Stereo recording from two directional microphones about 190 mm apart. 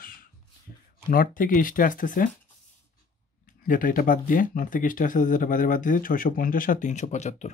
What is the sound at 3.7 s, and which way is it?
Speech, 45° left (ahead or behind).